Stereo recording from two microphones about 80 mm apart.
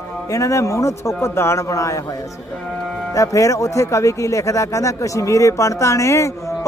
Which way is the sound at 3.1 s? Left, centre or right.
Left.